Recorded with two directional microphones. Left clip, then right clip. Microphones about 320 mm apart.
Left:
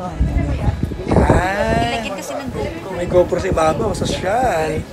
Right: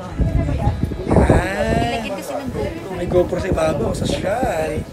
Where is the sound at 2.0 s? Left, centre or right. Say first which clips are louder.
Even; centre.